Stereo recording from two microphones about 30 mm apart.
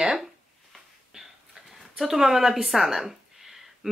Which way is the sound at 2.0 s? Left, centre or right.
Centre.